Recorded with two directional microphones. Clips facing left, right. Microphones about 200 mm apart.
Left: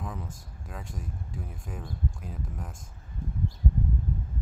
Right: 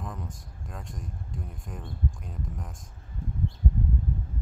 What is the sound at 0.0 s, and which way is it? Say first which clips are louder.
Speech: even; centre (ahead or behind).